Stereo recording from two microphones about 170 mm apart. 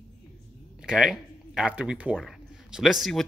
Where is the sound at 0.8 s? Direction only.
5° right (ahead or behind).